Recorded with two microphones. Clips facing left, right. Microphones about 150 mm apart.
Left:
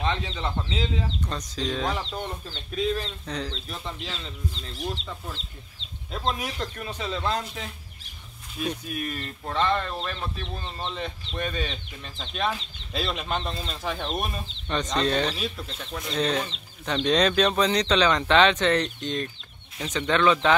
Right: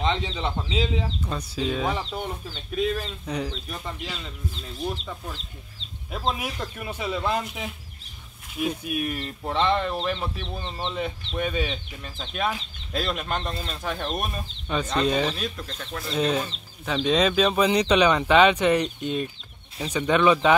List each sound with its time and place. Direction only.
0.0 s bird: 20° right (ahead or behind)
0.3 s speech: 15° right (ahead or behind)
10.4 s speech: centre (ahead or behind)